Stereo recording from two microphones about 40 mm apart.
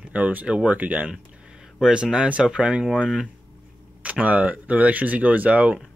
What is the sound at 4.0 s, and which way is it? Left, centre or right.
Speech, right.